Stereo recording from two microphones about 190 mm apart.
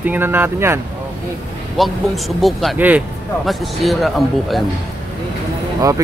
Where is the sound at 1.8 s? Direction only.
Centre (ahead or behind).